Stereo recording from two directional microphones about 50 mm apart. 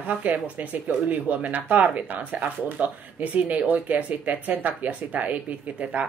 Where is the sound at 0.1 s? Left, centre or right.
Right.